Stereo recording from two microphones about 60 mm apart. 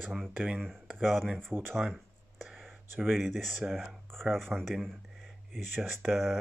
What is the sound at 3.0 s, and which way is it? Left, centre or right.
Speech, centre.